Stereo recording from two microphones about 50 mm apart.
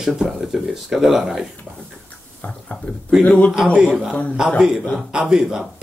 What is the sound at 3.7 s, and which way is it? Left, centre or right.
Speech, centre.